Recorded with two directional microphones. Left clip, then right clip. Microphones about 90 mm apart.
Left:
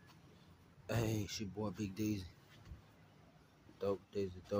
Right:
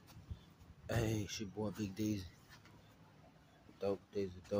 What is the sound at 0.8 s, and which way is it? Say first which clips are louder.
Speech: even; 20° left (ahead or behind).